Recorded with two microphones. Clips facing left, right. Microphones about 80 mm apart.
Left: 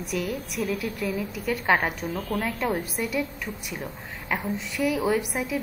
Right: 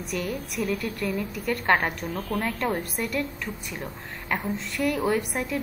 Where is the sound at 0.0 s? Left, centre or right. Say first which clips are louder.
Left 1 dB; centre.